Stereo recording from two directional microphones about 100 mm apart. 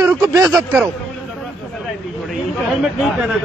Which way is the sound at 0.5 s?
15° right (ahead or behind).